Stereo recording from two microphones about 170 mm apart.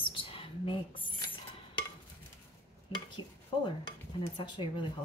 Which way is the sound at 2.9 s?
25° left (ahead or behind).